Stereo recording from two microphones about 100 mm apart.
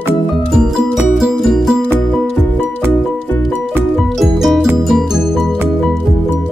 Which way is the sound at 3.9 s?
Centre (ahead or behind).